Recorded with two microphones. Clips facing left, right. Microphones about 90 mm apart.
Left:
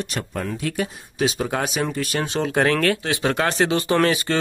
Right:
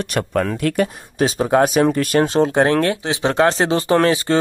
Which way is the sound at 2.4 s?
30° right (ahead or behind).